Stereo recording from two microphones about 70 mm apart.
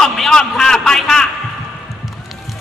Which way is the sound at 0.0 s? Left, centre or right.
Centre.